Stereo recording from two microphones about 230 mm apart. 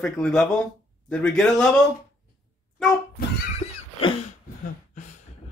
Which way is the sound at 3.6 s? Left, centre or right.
Left.